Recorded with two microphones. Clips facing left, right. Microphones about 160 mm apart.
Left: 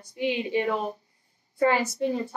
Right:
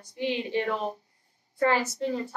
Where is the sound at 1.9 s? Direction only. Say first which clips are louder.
Left 3 dB; 15° left (ahead or behind).